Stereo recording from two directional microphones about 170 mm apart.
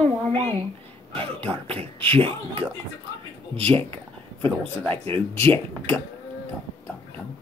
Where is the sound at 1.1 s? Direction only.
30° right (ahead or behind).